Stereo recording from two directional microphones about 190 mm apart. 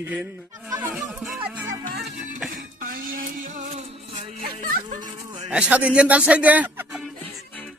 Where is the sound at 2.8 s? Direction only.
45° right (ahead or behind).